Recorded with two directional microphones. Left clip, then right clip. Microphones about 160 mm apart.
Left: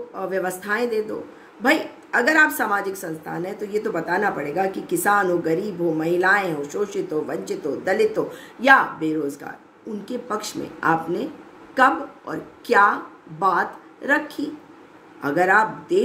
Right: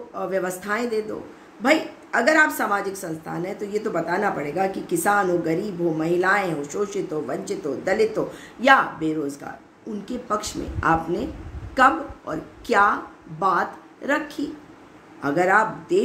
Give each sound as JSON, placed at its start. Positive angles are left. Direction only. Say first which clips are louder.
{"t": 0.1, "sound": "a woman's voice", "louder": "even", "side_deg": 10}